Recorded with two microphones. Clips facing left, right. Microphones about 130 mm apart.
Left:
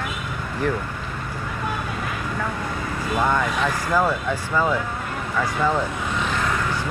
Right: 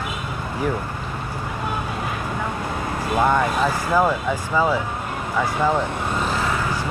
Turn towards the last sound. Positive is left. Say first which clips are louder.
# right 2 dB
turn(degrees=-40)  # may be behind; listen again after turning